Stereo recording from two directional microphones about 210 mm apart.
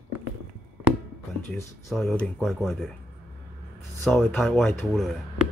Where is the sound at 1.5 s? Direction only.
15° left (ahead or behind).